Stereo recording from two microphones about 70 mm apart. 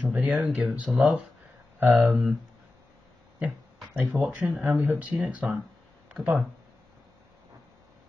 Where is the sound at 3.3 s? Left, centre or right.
Right.